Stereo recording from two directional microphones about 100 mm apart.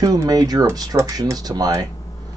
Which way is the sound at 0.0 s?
35° right (ahead or behind).